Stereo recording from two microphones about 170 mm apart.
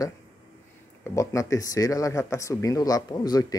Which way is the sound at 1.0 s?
20° left (ahead or behind).